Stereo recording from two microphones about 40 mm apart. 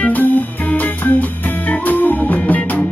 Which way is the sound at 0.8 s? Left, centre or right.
Left.